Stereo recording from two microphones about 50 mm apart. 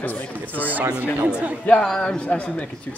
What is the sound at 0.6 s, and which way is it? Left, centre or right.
Speech, right.